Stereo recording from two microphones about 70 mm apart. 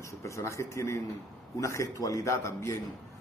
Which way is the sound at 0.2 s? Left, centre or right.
Left.